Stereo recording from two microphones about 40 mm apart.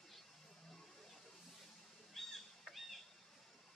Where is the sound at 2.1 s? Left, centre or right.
Centre.